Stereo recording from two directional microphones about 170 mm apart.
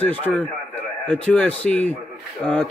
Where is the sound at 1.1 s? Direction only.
10° left (ahead or behind).